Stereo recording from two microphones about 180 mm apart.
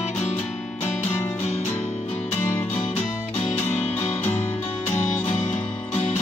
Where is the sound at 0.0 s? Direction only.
40° left (ahead or behind).